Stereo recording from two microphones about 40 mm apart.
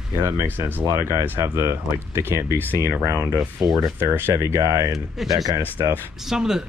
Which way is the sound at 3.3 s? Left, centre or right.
Centre.